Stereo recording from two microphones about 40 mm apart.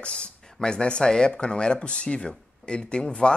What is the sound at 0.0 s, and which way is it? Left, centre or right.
Speech, left.